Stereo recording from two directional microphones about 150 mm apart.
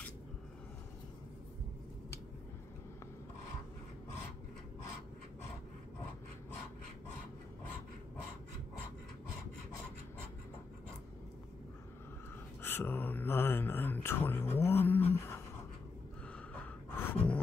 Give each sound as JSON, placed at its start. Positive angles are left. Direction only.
{"t": 12.6, "sound": "speech", "side_deg": 15}
{"t": 15.1, "sound": "a sound", "side_deg": 15}
{"t": 17.1, "sound": "gasp", "side_deg": 10}